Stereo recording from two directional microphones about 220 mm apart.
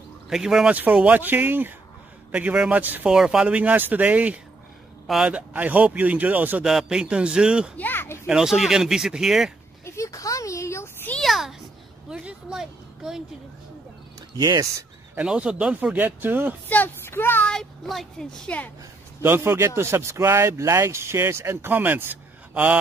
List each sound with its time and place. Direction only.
0.3 s a man's voice: centre (ahead or behind)
7.7 s speech: 10° left (ahead or behind)
8.3 s a man's voice: centre (ahead or behind)
9.8 s a sound: 15° left (ahead or behind)
12.1 s a woman's voice: 5° right (ahead or behind)
14.3 s speech: 15° right (ahead or behind)
16.6 s a woman's voice: 10° left (ahead or behind)
19.2 s speech: 10° right (ahead or behind)